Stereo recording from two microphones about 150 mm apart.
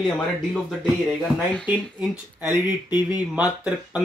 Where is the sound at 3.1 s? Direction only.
25° left (ahead or behind).